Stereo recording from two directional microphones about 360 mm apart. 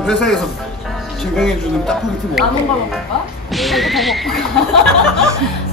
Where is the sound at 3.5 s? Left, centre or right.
Centre.